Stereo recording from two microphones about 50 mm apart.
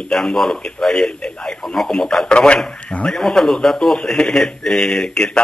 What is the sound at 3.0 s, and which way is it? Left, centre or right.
Speech, centre.